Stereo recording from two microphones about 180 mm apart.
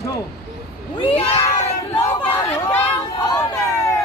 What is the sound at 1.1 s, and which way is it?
Crowd, 35° left (ahead or behind).